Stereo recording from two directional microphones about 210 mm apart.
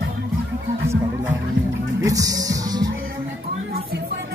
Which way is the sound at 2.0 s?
15° right (ahead or behind).